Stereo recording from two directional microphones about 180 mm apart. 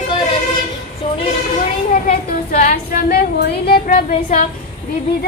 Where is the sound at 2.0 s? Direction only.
45° left (ahead or behind).